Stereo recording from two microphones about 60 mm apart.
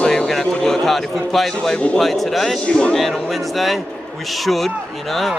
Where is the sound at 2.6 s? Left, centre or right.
Centre.